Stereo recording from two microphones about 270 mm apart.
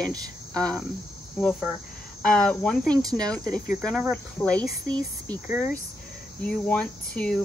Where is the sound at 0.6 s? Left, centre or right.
Centre.